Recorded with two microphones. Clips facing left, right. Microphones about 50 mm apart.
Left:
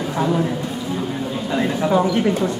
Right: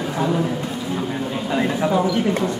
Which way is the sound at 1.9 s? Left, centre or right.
Left.